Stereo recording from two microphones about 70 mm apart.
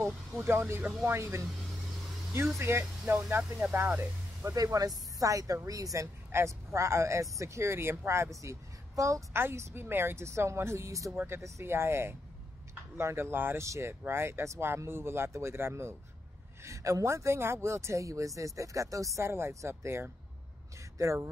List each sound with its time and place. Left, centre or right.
0.0 s speech: right
2.6 s speech: right
4.5 s speech: right
6.3 s speech: right
9.3 s speech: right
16.6 s speech: right